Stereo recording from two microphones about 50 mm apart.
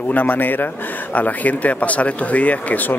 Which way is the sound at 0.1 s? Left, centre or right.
Left.